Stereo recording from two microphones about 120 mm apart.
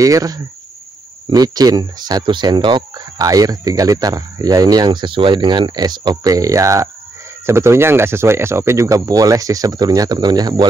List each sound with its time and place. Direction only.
0.0 s speech: 30° right (ahead or behind)